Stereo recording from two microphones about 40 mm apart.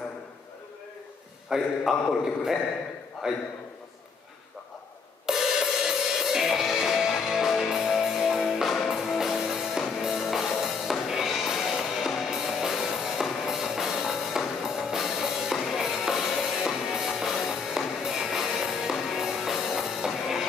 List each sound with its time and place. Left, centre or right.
1.5 s a man's voice: centre
3.2 s a man's voice: centre
5.2 s music: centre